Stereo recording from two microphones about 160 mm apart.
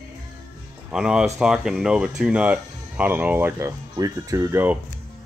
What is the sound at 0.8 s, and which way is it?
Speech, 5° right (ahead or behind).